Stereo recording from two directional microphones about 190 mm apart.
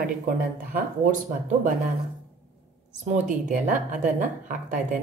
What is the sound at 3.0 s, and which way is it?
A woman's voice, 40° right (ahead or behind).